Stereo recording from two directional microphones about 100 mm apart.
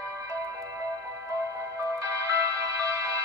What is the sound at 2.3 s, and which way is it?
Music, 35° right (ahead or behind).